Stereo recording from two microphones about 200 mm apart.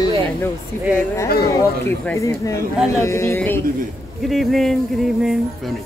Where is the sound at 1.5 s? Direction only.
15° left (ahead or behind).